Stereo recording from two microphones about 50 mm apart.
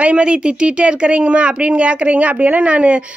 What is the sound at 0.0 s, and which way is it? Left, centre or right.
Speech, right.